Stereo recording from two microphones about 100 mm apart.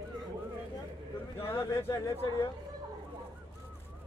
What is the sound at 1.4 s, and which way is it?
Speech, 30° left (ahead or behind).